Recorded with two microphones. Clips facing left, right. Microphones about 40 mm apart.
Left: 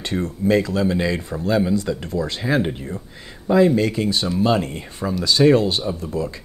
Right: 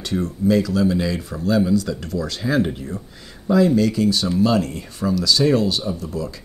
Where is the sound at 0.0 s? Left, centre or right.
Left.